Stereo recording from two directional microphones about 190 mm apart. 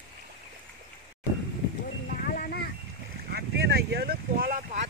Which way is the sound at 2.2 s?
50° left (ahead or behind).